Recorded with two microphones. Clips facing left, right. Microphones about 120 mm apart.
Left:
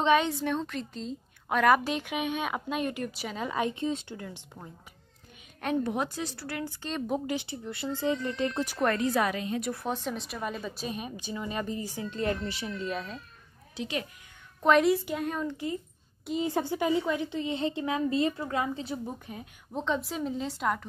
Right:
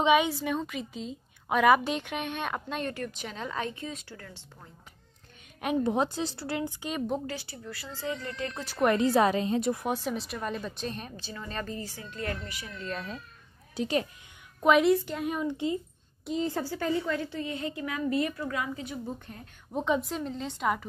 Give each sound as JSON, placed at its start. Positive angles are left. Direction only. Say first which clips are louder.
{"t": 0.0, "sound": "a woman's voice", "louder": "right 1 dB", "side_deg": -10}
{"t": 3.7, "sound": "a woman's voice", "louder": "left 8 dB", "side_deg": 25}
{"t": 5.9, "sound": "a woman's voice", "louder": "right 4 dB", "side_deg": -25}
{"t": 7.2, "sound": "a woman's voice", "louder": "left 5 dB", "side_deg": 20}
{"t": 8.9, "sound": "a woman's voice", "louder": "right 4 dB", "side_deg": -30}
{"t": 9.8, "sound": "speech", "louder": "right 2 dB", "side_deg": -10}
{"t": 12.8, "sound": "a woman's voice", "louder": "even", "side_deg": 0}
{"t": 13.7, "sound": "a woman's voice", "louder": "right 5 dB", "side_deg": -40}
{"t": 14.6, "sound": "a woman's voice", "louder": "right 1 dB", "side_deg": -5}
{"t": 15.4, "sound": "a woman's voice", "louder": "right 3 dB", "side_deg": -20}
{"t": 16.3, "sound": "a woman's voice", "louder": "left 1 dB", "side_deg": 10}
{"t": 19.0, "sound": "speech", "louder": "even", "side_deg": 5}
{"t": 19.7, "sound": "a woman's voice", "louder": "right 2 dB", "side_deg": -5}